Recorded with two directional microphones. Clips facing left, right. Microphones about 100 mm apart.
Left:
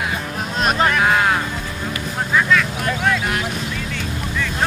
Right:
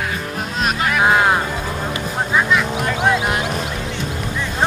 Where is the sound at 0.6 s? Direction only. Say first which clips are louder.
Left 2 dB; centre (ahead or behind).